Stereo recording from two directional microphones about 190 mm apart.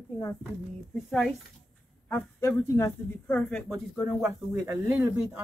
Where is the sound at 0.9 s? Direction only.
Centre (ahead or behind).